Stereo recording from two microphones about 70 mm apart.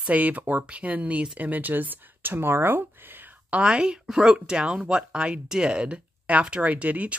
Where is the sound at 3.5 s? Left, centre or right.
Centre.